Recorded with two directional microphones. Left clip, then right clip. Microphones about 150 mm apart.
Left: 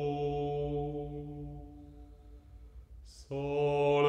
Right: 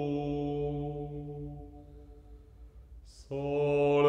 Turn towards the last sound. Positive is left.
turn(degrees=30)  # may be behind; listen again after turning